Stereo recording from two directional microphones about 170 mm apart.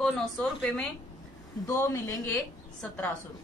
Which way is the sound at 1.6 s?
15° left (ahead or behind).